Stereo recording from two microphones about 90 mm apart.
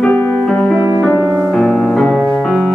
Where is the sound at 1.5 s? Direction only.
10° left (ahead or behind).